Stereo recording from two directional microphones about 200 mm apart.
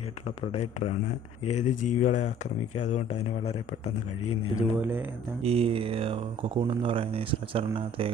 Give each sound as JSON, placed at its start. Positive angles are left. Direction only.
{"t": 0.4, "sound": "speech", "side_deg": 30}
{"t": 4.6, "sound": "speech", "side_deg": -10}
{"t": 5.4, "sound": "speech", "side_deg": -30}